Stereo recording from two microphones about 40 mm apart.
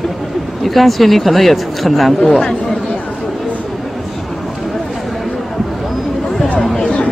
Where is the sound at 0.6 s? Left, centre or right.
Centre.